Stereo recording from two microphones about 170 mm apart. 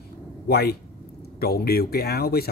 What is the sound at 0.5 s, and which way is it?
A man's voice, 65° left (ahead or behind).